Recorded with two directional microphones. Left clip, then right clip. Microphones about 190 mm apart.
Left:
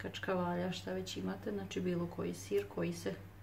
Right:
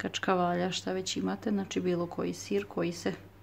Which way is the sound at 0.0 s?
55° right (ahead or behind).